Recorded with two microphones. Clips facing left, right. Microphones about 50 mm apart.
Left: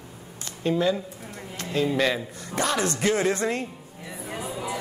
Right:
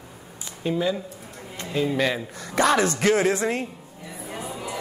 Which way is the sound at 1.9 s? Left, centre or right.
Centre.